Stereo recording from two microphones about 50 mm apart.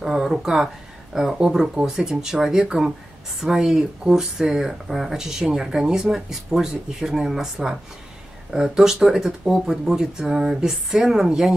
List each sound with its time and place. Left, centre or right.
0.0 s speech: centre
8.7 s speech: centre